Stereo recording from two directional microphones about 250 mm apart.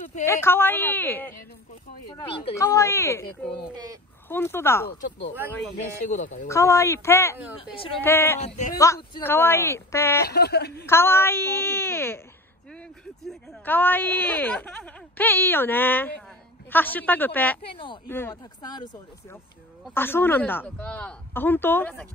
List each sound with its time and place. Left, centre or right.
0.2 s speech: centre
2.3 s speech: centre
6.1 s speech: left
6.4 s speech: centre
10.2 s speech: left
10.9 s speech: centre
13.2 s speech: centre
17.6 s speech: centre
18.0 s speech: centre